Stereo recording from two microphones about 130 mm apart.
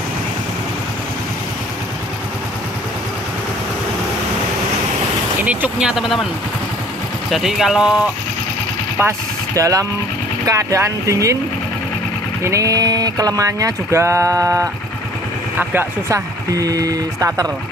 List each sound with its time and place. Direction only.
5.4 s speech: 10° right (ahead or behind)
7.2 s speech: centre (ahead or behind)
9.6 s speech: 25° right (ahead or behind)
12.4 s speech: 25° right (ahead or behind)
15.7 s speech: 15° right (ahead or behind)
16.5 s speech: 30° right (ahead or behind)